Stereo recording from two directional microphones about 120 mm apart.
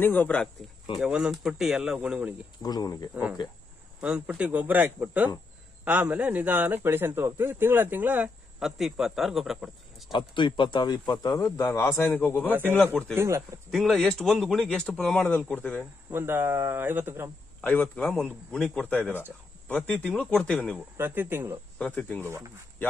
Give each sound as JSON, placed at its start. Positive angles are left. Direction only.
{"t": 0.0, "sound": "speech", "side_deg": 15}
{"t": 0.9, "sound": "speech", "side_deg": -5}
{"t": 2.6, "sound": "speech", "side_deg": 35}
{"t": 4.0, "sound": "speech", "side_deg": -10}
{"t": 10.1, "sound": "speech", "side_deg": 40}
{"t": 12.4, "sound": "speech", "side_deg": -15}
{"t": 12.7, "sound": "speech", "side_deg": 10}
{"t": 13.1, "sound": "speech", "side_deg": -20}
{"t": 13.7, "sound": "speech", "side_deg": 0}
{"t": 16.1, "sound": "speech", "side_deg": -20}
{"t": 17.6, "sound": "speech", "side_deg": 15}
{"t": 21.0, "sound": "speech", "side_deg": -20}
{"t": 21.7, "sound": "speech", "side_deg": 10}